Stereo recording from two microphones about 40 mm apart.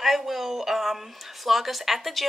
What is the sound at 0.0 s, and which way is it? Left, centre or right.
A woman's voice, centre.